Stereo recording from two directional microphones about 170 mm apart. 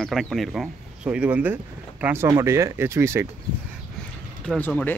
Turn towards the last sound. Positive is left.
turn(degrees=10)  # may be behind; listen again after turning